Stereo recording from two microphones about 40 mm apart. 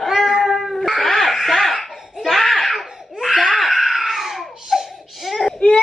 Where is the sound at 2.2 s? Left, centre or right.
Centre.